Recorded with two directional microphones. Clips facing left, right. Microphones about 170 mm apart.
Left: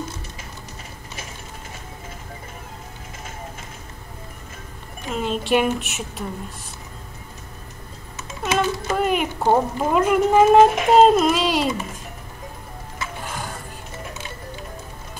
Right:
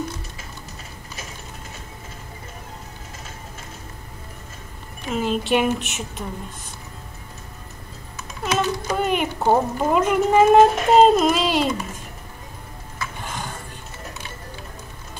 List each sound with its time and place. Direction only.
5.1 s speech: centre (ahead or behind)
8.2 s a sound: 25° left (ahead or behind)
8.9 s speech: centre (ahead or behind)
13.2 s music: 5° left (ahead or behind)